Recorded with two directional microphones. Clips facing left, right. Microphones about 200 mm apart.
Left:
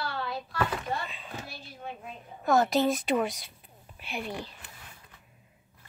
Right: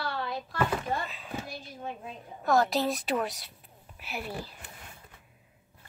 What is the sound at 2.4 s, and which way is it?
A woman's voice, centre (ahead or behind).